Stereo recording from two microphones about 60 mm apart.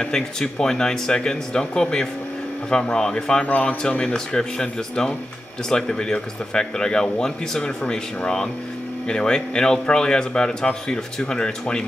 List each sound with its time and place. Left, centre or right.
0.0 s speech: centre
3.4 s a man's voice: left
3.9 s speech: centre